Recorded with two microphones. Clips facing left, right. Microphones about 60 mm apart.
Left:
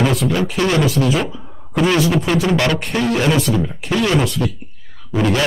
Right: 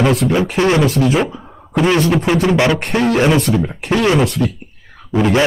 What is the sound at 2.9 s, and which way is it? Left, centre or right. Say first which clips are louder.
Speech: right 4 dB; right.